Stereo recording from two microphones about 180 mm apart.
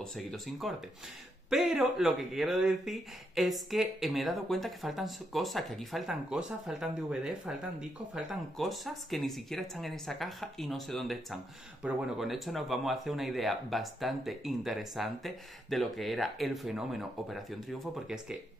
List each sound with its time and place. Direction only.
0.0 s speech: centre (ahead or behind)